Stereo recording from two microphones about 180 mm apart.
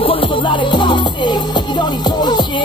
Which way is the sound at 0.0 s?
30° left (ahead or behind).